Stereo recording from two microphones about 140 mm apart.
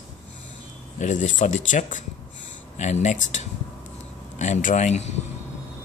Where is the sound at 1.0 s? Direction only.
60° left (ahead or behind).